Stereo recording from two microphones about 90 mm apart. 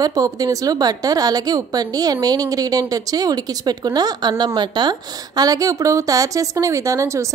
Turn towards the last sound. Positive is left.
turn(degrees=-35)  # may be behind; listen again after turning